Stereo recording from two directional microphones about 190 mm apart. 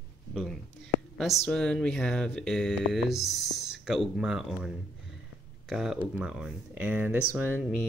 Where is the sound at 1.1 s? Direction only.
Centre (ahead or behind).